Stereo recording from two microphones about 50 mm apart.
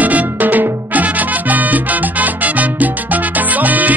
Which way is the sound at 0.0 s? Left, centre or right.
Right.